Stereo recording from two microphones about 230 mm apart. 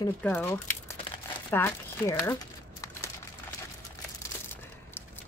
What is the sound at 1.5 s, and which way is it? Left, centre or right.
Crumpling, centre.